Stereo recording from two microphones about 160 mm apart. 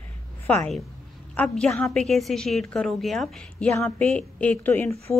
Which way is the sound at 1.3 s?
5° left (ahead or behind).